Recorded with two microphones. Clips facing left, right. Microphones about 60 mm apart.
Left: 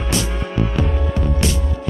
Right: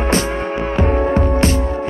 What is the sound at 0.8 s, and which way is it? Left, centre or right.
Hum, right.